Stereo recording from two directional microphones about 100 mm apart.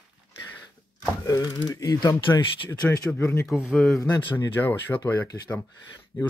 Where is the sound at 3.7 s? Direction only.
Centre (ahead or behind).